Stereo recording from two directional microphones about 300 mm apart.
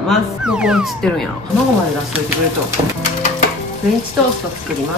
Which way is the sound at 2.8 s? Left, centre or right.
Centre.